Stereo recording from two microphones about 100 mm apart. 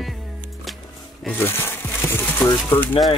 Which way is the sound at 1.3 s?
20° left (ahead or behind).